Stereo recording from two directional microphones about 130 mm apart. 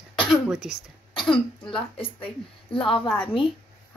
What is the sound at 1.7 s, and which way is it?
Speech, 40° left (ahead or behind).